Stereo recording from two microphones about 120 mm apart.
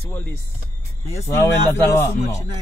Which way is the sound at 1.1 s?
25° left (ahead or behind).